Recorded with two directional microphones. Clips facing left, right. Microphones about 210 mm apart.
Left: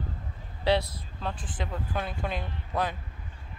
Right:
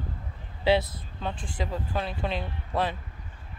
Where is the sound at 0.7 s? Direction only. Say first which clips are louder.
Right 2 dB; centre (ahead or behind).